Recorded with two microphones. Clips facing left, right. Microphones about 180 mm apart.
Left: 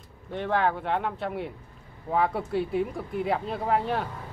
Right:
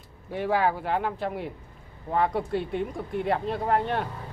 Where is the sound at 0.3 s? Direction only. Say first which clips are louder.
Right 1 dB; 5° right (ahead or behind).